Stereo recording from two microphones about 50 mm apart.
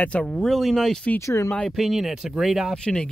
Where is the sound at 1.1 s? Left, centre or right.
Left.